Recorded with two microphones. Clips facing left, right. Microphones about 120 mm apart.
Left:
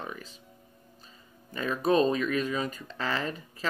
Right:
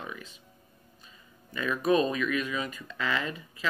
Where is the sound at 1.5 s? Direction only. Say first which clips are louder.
Even; 35° left (ahead or behind).